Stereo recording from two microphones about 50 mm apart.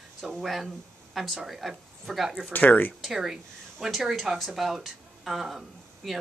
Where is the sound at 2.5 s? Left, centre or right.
Left.